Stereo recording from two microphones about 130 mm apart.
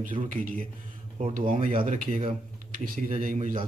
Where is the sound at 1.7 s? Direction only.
90° right.